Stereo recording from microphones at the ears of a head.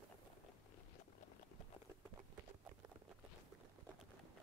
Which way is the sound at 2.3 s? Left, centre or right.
Right.